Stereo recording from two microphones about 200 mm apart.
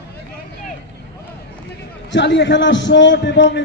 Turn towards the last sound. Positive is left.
turn(degrees=60)  # may be behind; listen again after turning